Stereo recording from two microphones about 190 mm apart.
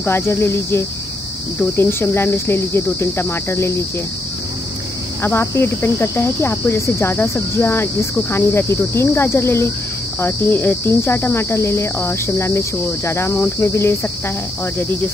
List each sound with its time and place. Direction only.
0.0 s cricket: 10° left (ahead or behind)
5.2 s cricket: 15° left (ahead or behind)